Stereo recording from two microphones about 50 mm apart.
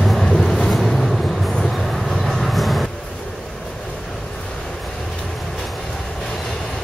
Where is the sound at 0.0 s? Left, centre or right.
Centre.